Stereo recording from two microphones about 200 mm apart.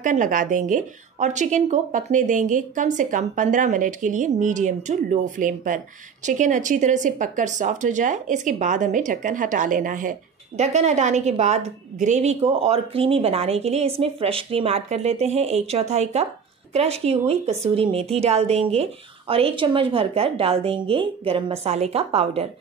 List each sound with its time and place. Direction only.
0.0 s speech: 40° right (ahead or behind)